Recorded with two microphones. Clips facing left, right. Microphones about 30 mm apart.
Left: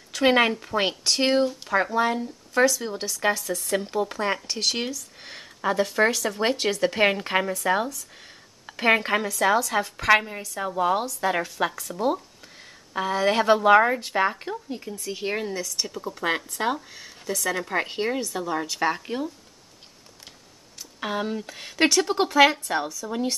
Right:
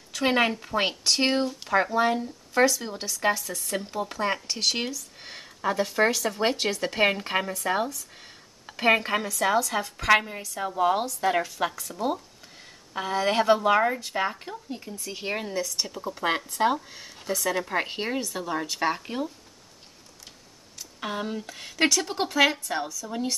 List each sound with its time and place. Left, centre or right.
0.1 s a woman's voice: centre
0.5 s speech: centre
3.0 s speech: centre
13.5 s a woman's voice: centre
15.0 s speech: centre
21.0 s a woman's voice: centre